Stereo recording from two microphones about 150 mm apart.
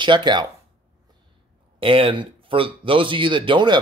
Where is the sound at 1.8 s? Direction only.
35° right (ahead or behind).